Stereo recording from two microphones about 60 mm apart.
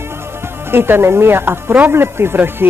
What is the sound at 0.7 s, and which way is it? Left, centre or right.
A man's voice, right.